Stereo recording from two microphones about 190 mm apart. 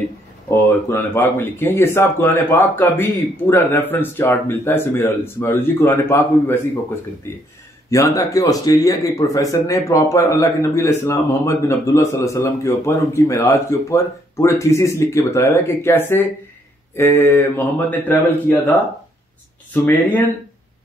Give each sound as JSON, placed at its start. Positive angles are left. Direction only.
{"t": 0.5, "sound": "speech", "side_deg": 15}
{"t": 7.9, "sound": "speech", "side_deg": 15}
{"t": 19.7, "sound": "speech", "side_deg": 10}